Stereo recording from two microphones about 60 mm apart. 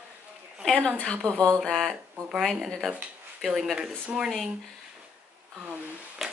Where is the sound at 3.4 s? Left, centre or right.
Centre.